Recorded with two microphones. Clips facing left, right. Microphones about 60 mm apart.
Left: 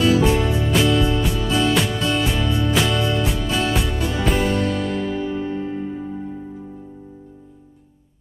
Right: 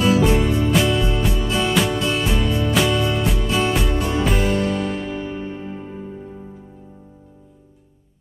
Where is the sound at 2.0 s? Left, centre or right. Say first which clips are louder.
Even; centre.